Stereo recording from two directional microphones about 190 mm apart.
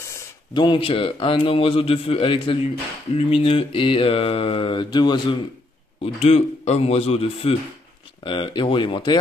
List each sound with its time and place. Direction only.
0.0 s speech: 20° left (ahead or behind)
6.1 s speech: 35° left (ahead or behind)